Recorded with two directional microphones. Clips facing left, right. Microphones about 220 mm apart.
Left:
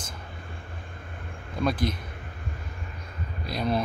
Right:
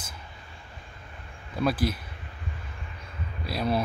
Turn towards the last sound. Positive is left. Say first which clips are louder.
# even
turn(degrees=-5)  # may be behind; listen again after turning